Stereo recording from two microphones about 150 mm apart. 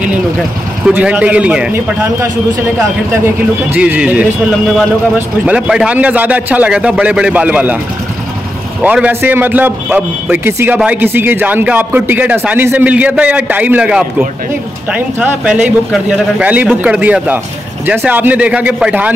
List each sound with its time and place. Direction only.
0.8 s a man's voice: 10° right (ahead or behind)
8.8 s a man's voice: 10° right (ahead or behind)